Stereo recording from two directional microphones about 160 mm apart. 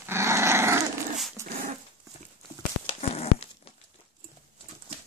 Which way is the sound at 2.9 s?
40° left (ahead or behind).